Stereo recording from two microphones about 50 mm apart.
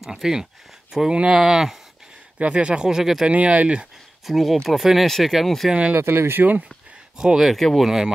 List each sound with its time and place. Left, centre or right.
0.0 s speech: centre
1.1 s speech: right
1.4 s speech: centre
2.3 s speech: right
3.3 s speech: right
4.3 s speech: centre
5.7 s speech: right
5.9 s speech: right
7.2 s speech: centre
7.5 s speech: centre